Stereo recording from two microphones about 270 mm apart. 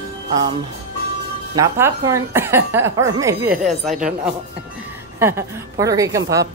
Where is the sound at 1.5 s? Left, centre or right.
Centre.